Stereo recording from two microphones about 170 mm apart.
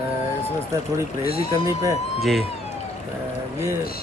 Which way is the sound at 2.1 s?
Centre (ahead or behind).